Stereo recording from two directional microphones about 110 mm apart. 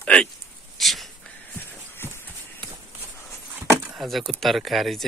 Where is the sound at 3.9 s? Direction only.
Centre (ahead or behind).